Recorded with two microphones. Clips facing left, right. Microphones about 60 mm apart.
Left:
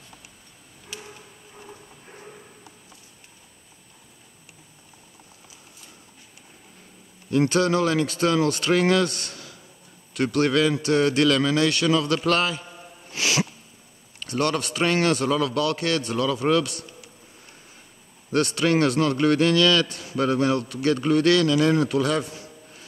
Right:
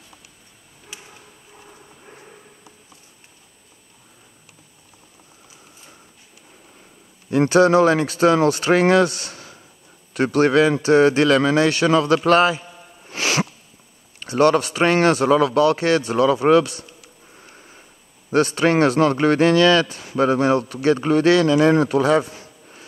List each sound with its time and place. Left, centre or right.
7.2 s a man's voice: right
13.1 s sneeze: right
14.2 s a man's voice: right
18.5 s a man's voice: right